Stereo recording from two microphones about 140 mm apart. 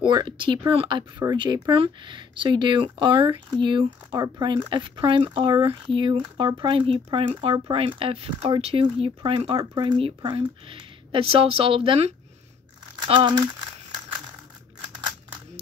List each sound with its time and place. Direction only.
0.0 s speech: 35° right (ahead or behind)
10.3 s speech: 40° right (ahead or behind)